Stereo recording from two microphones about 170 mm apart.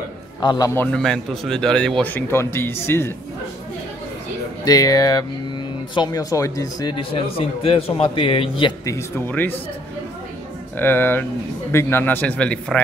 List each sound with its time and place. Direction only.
0.4 s a man's voice: 25° left (ahead or behind)
0.7 s speech: 5° left (ahead or behind)
4.6 s a man's voice: 20° left (ahead or behind)
8.9 s speech: 15° left (ahead or behind)
10.8 s speech: 15° left (ahead or behind)